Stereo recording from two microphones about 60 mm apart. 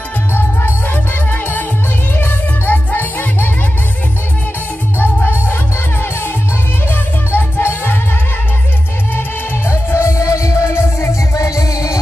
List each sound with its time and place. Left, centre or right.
0.3 s music: left
4.9 s music: left
9.7 s music: left